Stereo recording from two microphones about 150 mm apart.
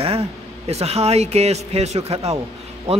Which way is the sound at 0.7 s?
45° right (ahead or behind).